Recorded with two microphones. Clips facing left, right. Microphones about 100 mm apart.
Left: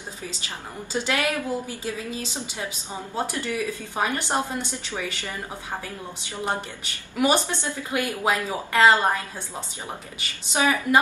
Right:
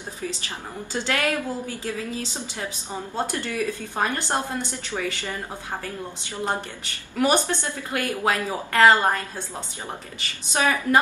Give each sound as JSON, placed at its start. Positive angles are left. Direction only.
{"t": 0.9, "sound": "a woman's voice", "side_deg": 15}
{"t": 6.3, "sound": "a woman's voice", "side_deg": 15}
{"t": 10.5, "sound": "a woman's voice", "side_deg": 15}